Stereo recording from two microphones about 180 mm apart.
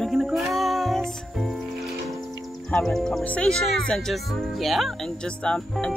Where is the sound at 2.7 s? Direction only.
5° left (ahead or behind).